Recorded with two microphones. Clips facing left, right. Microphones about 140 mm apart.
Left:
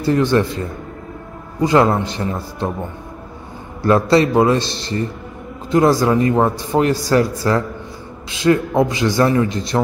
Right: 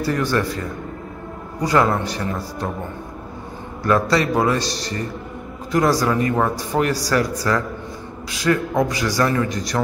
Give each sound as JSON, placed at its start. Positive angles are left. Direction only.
{"t": 0.0, "sound": "a man's voice", "side_deg": 25}
{"t": 1.6, "sound": "a man's voice", "side_deg": 25}
{"t": 3.8, "sound": "a man's voice", "side_deg": 30}